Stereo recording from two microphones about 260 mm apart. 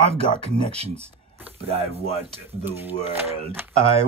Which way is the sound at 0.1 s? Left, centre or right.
Right.